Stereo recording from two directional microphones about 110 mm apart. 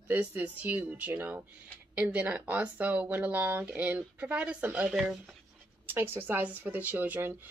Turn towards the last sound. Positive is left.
turn(degrees=-20)  # may be behind; listen again after turning